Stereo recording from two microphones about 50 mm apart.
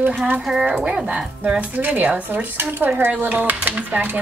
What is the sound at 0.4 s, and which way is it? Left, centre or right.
Speech, centre.